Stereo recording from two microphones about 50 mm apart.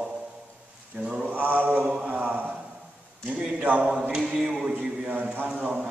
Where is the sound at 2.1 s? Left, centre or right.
Right.